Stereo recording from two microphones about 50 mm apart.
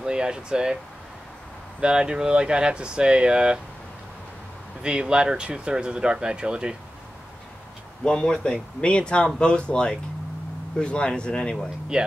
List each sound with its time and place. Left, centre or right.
0.0 s speech: centre
1.8 s speech: centre
4.8 s speech: centre
8.0 s speech: centre
11.9 s speech: centre